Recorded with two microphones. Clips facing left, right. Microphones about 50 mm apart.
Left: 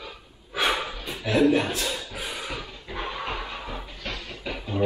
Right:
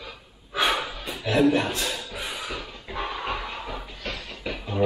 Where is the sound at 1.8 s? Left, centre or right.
Centre.